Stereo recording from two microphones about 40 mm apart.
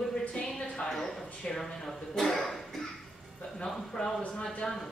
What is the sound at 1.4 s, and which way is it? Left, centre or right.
Speech, centre.